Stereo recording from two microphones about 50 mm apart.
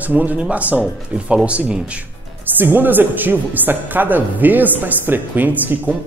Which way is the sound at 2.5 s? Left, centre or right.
Right.